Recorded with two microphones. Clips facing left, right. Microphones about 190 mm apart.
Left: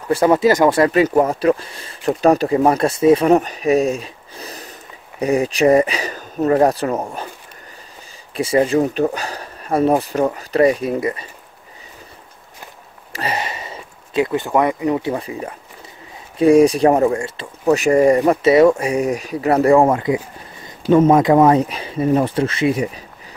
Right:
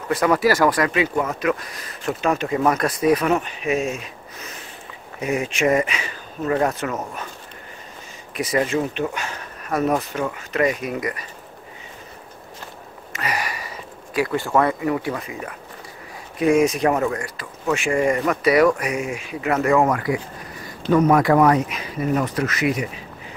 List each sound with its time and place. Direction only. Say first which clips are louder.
0.1 s speech: left 5 dB; 25° left (ahead or behind)
0.9 s speech: left 7 dB; 40° left (ahead or behind)
8.4 s speech: left 6 dB; 30° left (ahead or behind)
13.1 s speech: left 3 dB; 30° left (ahead or behind)
17.7 s speech: left 7 dB; 40° left (ahead or behind)